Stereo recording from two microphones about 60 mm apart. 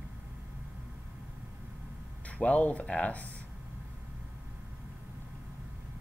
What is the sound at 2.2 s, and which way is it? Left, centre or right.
Speech, left.